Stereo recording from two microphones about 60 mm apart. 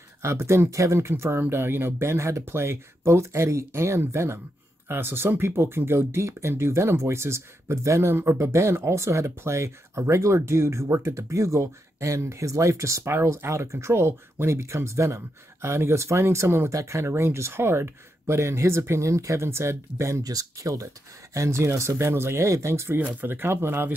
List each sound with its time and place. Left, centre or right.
0.2 s speech: right
4.8 s speech: right
13.1 s speech: right
20.2 s speech: right